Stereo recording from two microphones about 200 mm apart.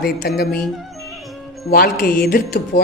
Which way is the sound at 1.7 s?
50° left (ahead or behind).